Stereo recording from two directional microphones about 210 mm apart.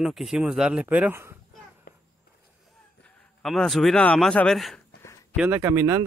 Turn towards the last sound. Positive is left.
turn(degrees=-10)  # may be behind; listen again after turning